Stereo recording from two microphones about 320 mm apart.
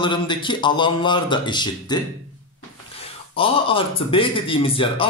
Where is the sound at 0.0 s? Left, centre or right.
Centre.